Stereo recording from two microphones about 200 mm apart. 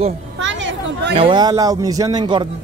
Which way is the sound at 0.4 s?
65° right (ahead or behind).